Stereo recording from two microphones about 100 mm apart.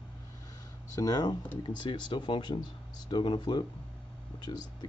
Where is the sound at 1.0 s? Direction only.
40° left (ahead or behind).